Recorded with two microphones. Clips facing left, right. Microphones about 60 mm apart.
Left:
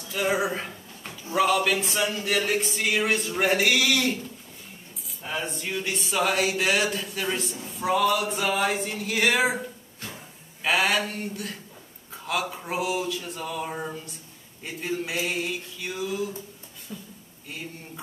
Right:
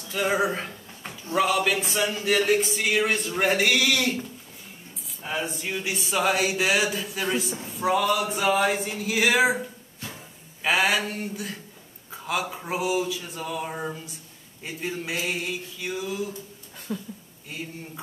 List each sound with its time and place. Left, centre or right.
0.0 s speech: centre
5.2 s speech: centre
16.9 s speech: right
17.5 s speech: centre